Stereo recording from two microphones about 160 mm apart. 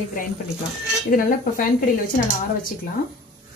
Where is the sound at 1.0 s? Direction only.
60° left (ahead or behind).